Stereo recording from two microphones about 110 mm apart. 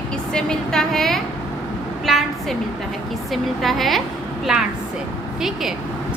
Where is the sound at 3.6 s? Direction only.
Centre (ahead or behind).